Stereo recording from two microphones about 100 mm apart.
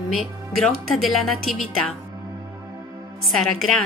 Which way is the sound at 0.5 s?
Centre (ahead or behind).